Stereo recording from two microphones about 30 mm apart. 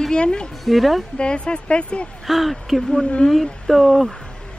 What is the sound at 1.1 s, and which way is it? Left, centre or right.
Speech, left.